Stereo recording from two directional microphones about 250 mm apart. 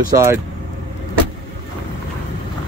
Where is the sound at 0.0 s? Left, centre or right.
Centre.